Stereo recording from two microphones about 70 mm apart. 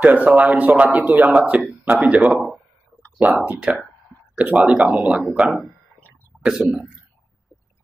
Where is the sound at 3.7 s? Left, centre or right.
Centre.